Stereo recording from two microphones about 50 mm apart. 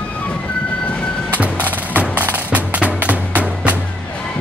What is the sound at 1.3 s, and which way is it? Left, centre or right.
Vehicle, right.